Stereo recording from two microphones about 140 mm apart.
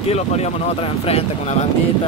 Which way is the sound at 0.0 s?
50° left (ahead or behind).